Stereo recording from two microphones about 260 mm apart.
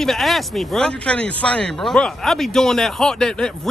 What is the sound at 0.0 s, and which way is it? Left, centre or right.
Speech, centre.